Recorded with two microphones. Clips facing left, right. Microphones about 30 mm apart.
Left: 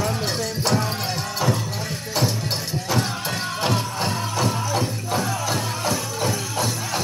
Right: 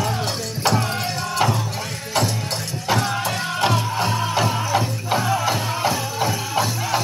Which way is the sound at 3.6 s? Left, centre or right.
Centre.